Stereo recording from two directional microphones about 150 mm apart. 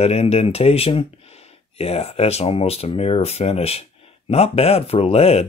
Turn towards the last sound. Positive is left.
turn(degrees=45)  # may be behind; listen again after turning